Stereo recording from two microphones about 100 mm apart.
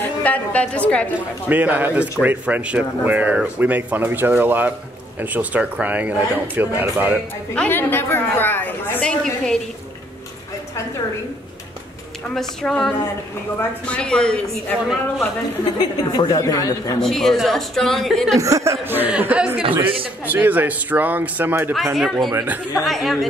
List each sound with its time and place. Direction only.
0.0 s a woman's voice: 15° left (ahead or behind)
1.5 s speech: 15° right (ahead or behind)
7.5 s a woman's voice: 20° left (ahead or behind)
9.0 s speech: 5° left (ahead or behind)
12.4 s a woman's voice: 5° left (ahead or behind)
15.8 s a woman's voice: 45° left (ahead or behind)
17.0 s a woman's voice: 5° left (ahead or behind)
18.4 s speech: 30° right (ahead or behind); by 19.6 s 15° right (ahead or behind)
19.8 s speech: 65° right (ahead or behind)
20.2 s speech: 15° right (ahead or behind)
21.7 s a woman's voice: centre (ahead or behind)
22.3 s speech: 25° right (ahead or behind)
22.8 s a woman's voice: centre (ahead or behind)